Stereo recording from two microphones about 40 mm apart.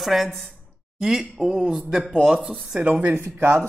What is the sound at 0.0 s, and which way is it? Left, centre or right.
Speech, centre.